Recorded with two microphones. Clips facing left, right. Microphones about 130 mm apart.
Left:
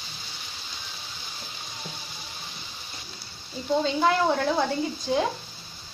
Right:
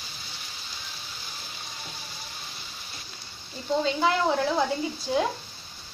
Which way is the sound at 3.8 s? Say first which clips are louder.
Left 1 dB; centre (ahead or behind).